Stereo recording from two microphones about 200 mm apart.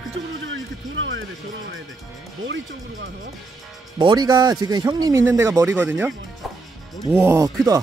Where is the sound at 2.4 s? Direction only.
65° right (ahead or behind).